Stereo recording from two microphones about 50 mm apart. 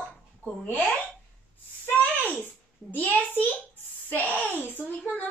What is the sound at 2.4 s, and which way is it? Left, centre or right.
Babbling, left.